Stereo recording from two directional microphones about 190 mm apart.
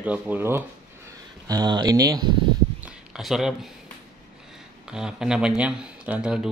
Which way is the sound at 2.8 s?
5° right (ahead or behind).